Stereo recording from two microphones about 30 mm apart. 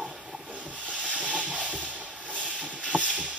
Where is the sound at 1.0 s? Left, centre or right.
Right.